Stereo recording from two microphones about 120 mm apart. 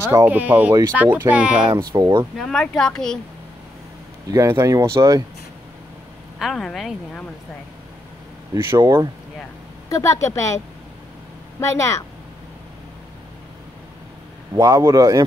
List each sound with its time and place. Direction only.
0.0 s speech: 20° right (ahead or behind)
1.7 s speech: 35° right (ahead or behind)
2.3 s speech: 5° left (ahead or behind)
4.3 s a man's voice: 25° right (ahead or behind)
6.4 s speech: 5° left (ahead or behind)
8.5 s a man's voice: 25° right (ahead or behind)
9.8 s a woman's voice: 25° left (ahead or behind)
11.6 s a woman's voice: 25° left (ahead or behind)
14.6 s a man's voice: 30° right (ahead or behind)